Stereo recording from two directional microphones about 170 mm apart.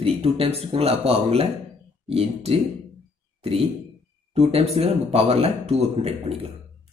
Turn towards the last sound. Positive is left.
turn(degrees=-35)  # may be behind; listen again after turning